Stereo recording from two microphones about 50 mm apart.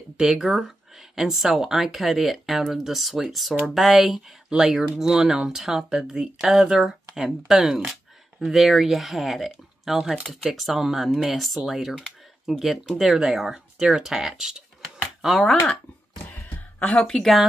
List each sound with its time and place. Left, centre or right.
0.2 s speech: centre
12.8 s speech: centre
15.4 s speech: centre
16.4 s a sound: left
16.9 s speech: centre
17.2 s speech: centre